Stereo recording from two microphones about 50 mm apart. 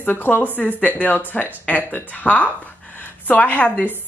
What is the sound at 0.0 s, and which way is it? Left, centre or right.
A woman's voice, left.